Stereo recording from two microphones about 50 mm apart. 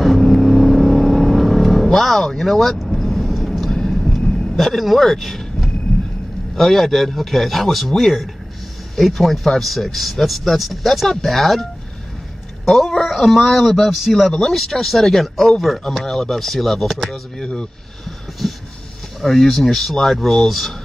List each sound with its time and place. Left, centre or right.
0.0 s vehicle: centre
4.0 s a sound: centre
4.6 s speech: centre
12.6 s speech: centre
18.4 s a sound: centre
19.2 s speech: centre